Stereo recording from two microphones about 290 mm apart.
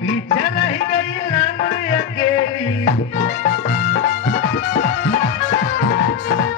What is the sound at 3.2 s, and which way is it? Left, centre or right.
Music, left.